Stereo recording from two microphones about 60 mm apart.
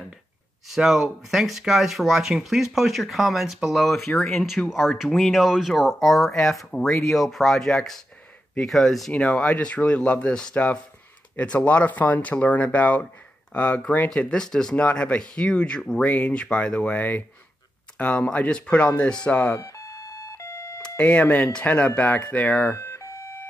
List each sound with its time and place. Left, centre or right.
0.7 s speech: centre
9.1 s speech: centre
14.1 s speech: centre
19.5 s alarm: left
21.0 s speech: left
22.8 s siren: left